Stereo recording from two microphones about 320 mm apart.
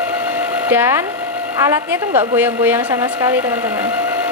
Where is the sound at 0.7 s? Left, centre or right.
Centre.